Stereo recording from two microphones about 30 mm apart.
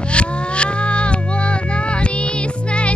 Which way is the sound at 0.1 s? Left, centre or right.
Left.